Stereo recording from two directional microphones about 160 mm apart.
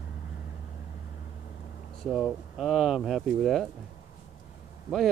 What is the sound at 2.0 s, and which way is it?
Speech, centre (ahead or behind).